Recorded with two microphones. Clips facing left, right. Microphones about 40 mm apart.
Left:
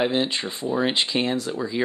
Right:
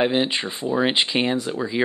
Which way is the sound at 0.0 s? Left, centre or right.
Right.